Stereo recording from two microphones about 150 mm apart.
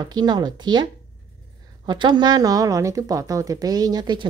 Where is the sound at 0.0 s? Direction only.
25° right (ahead or behind).